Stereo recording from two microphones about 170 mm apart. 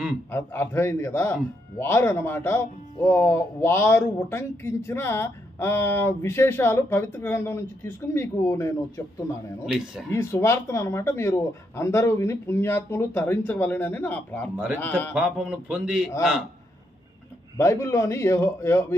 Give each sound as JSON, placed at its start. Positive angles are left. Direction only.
{"t": 0.3, "sound": "a man's voice", "side_deg": 15}
{"t": 9.7, "sound": "a man's voice", "side_deg": -5}
{"t": 10.1, "sound": "a man's voice", "side_deg": 15}
{"t": 15.1, "sound": "a man's voice", "side_deg": -5}
{"t": 17.6, "sound": "a man's voice", "side_deg": 15}